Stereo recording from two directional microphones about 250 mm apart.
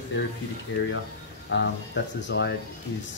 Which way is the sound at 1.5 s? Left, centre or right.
Left.